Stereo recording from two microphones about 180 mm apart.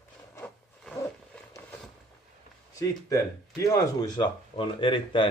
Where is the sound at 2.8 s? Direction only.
20° left (ahead or behind).